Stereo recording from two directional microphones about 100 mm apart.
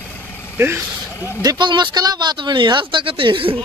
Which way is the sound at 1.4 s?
50° right (ahead or behind).